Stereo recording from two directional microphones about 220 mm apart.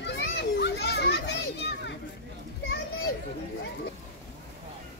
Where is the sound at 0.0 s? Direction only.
50° left (ahead or behind).